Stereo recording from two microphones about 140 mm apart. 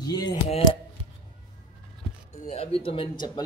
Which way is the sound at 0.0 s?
30° left (ahead or behind).